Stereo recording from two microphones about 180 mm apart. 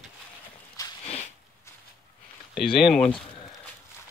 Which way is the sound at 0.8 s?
20° left (ahead or behind).